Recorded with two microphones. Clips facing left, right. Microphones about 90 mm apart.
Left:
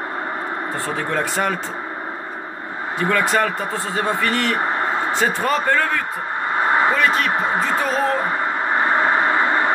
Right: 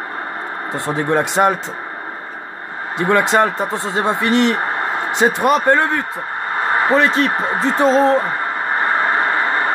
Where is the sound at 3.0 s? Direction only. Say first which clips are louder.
Right 4 dB; 20° right (ahead or behind).